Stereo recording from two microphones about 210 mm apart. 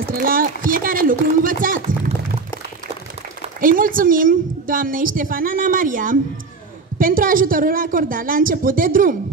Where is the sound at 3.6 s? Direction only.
40° right (ahead or behind).